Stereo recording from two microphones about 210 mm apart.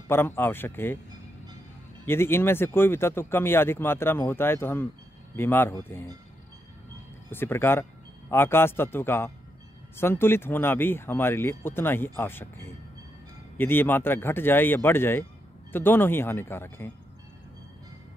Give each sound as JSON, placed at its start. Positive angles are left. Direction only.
{"t": 0.1, "sound": "speech", "side_deg": 10}
{"t": 2.0, "sound": "speech", "side_deg": 10}
{"t": 7.2, "sound": "speech", "side_deg": 10}